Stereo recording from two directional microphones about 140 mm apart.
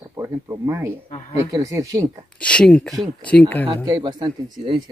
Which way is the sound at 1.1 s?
50° left (ahead or behind).